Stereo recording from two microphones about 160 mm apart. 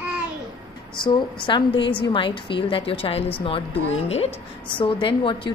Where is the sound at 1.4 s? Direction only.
30° left (ahead or behind).